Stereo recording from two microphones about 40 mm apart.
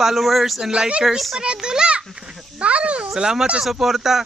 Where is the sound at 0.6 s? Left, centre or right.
Right.